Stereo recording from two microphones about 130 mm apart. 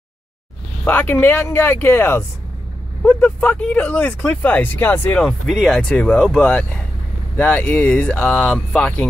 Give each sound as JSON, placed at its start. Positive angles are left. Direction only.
{"t": 0.8, "sound": "speech", "side_deg": 15}
{"t": 5.5, "sound": "speech", "side_deg": 0}